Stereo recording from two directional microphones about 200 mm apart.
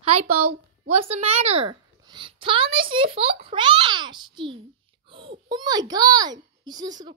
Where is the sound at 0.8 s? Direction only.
35° right (ahead or behind).